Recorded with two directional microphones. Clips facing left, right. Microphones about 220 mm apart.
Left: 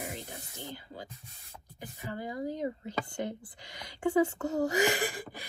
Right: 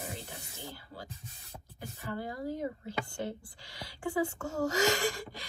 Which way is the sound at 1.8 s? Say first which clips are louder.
Even; 15° left (ahead or behind).